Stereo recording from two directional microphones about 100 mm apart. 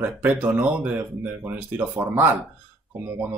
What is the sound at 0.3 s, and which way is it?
Speech, 10° right (ahead or behind).